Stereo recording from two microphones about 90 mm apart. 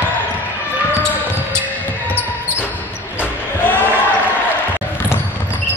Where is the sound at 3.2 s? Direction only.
20° left (ahead or behind).